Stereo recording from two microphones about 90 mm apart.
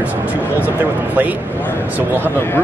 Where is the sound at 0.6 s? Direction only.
20° right (ahead or behind).